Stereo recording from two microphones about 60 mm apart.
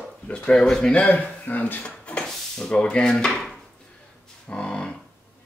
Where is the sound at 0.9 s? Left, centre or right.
Left.